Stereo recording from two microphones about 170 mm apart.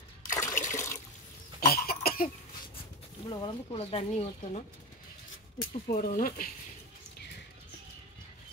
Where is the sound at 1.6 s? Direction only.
65° left (ahead or behind).